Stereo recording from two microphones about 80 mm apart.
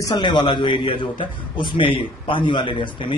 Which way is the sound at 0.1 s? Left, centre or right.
Left.